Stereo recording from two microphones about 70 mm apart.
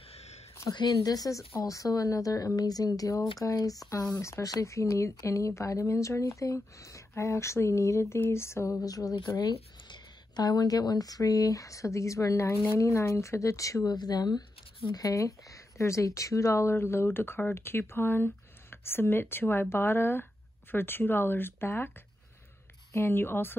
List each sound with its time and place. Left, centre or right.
0.7 s a woman's voice: left
8.8 s speech: left
13.9 s a woman's voice: left
22.9 s speech: left